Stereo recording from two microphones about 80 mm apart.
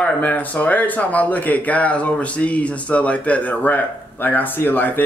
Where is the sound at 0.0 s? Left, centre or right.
Centre.